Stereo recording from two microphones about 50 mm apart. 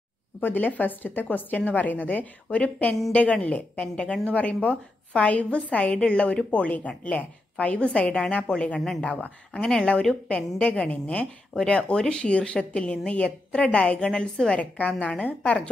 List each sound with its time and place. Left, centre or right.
0.4 s a woman's voice: left; by 14.6 s centre
14.6 s a woman's voice: left